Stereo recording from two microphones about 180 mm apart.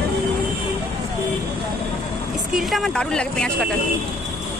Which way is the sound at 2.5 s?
Centre (ahead or behind).